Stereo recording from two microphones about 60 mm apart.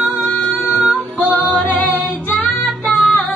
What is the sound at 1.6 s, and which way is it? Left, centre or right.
Music, left.